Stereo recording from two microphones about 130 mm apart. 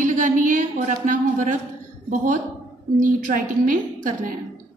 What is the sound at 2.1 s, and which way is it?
A woman's voice, 90° right.